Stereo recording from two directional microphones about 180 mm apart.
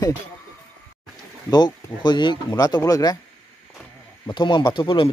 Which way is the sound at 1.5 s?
25° left (ahead or behind).